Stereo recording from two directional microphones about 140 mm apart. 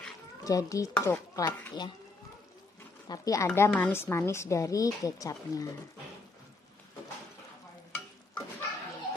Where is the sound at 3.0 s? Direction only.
25° left (ahead or behind).